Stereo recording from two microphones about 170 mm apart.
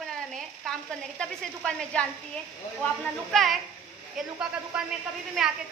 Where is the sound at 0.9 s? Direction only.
5° left (ahead or behind).